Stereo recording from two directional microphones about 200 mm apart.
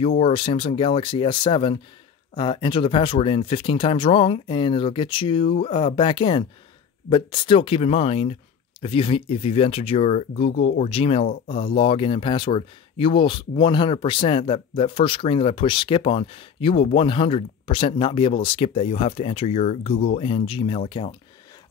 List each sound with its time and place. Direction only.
0.2 s speech: 25° left (ahead or behind)